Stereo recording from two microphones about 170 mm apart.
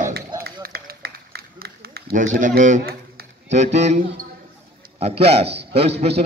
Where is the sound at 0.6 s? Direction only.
65° right (ahead or behind); by 2.9 s 50° right (ahead or behind).